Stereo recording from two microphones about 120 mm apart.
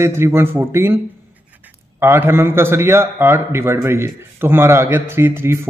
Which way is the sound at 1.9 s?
20° right (ahead or behind).